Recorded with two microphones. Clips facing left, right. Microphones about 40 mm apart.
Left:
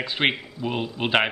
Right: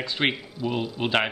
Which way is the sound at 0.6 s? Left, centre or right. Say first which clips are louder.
Even; left.